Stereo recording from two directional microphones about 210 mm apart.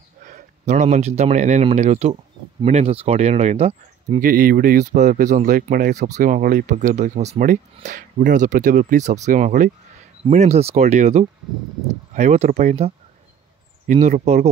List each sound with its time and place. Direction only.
0.2 s speech: 35° right (ahead or behind)
4.2 s speech: 40° right (ahead or behind)